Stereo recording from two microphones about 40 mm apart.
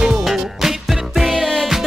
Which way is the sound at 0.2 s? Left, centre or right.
Centre.